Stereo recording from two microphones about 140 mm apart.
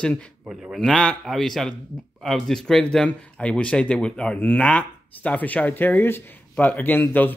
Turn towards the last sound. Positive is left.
turn(degrees=15)  # may be behind; listen again after turning